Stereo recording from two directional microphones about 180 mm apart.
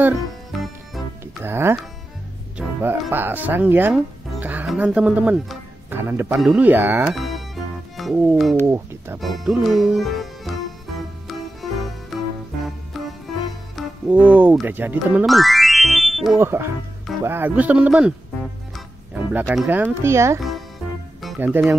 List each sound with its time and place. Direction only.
0.5 s music: centre (ahead or behind)
1.2 s speech: 15° right (ahead or behind)
7.2 s music: centre (ahead or behind)
8.2 s speech: 5° right (ahead or behind)
9.2 s music: centre (ahead or behind)
13.7 s speech: 5° right (ahead or behind)
15.2 s music: centre (ahead or behind)
16.3 s speech: 15° right (ahead or behind)
19.1 s speech: 10° right (ahead or behind)
21.4 s speech: 10° right (ahead or behind)